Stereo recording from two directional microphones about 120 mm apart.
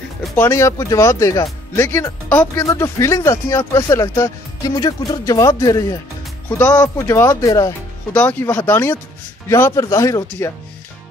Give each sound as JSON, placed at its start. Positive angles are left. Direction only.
{"t": 0.4, "sound": "speech", "side_deg": 25}
{"t": 6.5, "sound": "speech", "side_deg": 20}
{"t": 8.1, "sound": "speech", "side_deg": 15}